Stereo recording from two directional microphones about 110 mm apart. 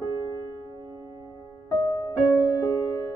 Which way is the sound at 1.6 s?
35° left (ahead or behind).